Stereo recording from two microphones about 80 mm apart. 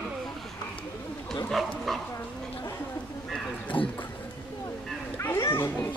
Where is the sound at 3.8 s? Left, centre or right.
Left.